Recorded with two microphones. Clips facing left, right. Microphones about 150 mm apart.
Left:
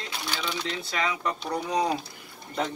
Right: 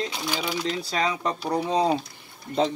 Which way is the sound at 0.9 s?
35° right (ahead or behind).